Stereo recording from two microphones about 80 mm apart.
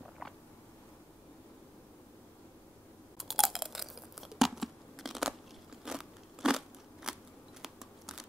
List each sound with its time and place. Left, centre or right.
3.2 s tearing: centre
5.9 s crackle: centre
7.6 s a sound: centre